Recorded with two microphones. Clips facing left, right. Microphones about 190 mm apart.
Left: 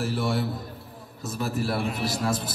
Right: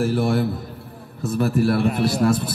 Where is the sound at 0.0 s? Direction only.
55° right (ahead or behind).